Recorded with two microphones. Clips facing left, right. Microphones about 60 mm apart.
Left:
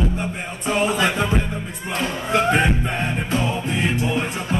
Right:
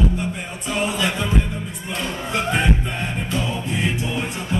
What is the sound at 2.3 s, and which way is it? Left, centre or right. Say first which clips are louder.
Music: left 3 dB; left.